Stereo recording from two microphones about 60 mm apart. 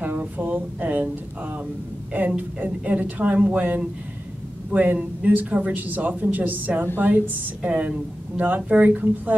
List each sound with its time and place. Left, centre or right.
0.0 s a woman's voice: right
7.6 s speech: right